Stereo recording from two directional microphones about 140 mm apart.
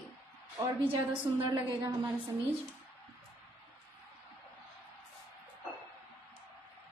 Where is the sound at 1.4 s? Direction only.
30° right (ahead or behind).